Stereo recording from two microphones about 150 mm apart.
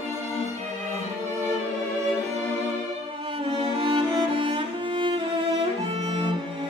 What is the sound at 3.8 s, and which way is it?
Music, 35° right (ahead or behind).